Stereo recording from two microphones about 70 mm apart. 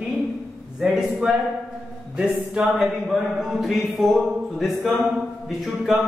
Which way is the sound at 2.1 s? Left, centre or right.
Centre.